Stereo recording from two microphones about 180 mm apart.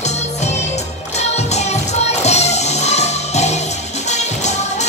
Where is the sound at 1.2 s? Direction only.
40° left (ahead or behind).